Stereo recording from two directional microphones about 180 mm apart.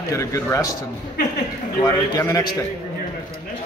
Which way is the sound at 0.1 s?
15° left (ahead or behind).